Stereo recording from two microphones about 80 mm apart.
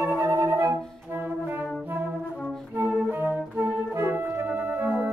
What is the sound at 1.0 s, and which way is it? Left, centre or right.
Brass instrument, right.